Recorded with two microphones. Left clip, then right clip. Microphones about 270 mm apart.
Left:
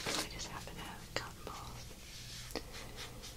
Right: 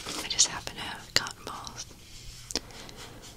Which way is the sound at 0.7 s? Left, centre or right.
Right.